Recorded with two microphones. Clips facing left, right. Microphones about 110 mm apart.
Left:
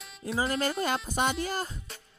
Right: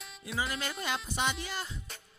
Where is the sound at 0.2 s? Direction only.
40° left (ahead or behind).